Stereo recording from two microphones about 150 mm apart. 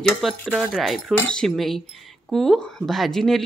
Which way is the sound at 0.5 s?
Centre (ahead or behind).